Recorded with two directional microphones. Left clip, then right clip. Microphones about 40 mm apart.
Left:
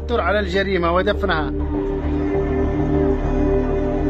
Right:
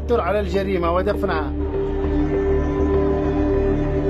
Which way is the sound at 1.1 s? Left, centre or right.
Right.